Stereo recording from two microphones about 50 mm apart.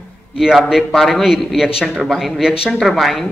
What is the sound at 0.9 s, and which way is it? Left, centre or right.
A man's voice, centre.